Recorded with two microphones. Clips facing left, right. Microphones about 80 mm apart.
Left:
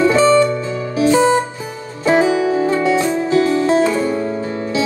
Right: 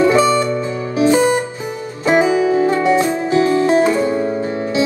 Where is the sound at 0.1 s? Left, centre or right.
Right.